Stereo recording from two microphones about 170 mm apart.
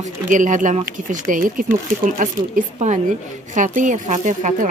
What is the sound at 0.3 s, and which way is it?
A woman's voice, 50° right (ahead or behind).